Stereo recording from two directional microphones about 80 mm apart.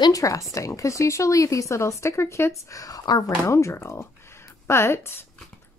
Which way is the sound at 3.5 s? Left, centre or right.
Left.